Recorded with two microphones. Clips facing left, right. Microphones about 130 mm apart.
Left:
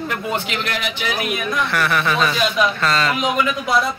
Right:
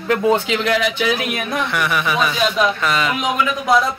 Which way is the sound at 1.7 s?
15° right (ahead or behind).